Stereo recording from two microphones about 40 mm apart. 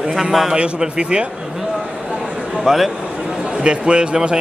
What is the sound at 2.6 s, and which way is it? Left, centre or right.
Speech, centre.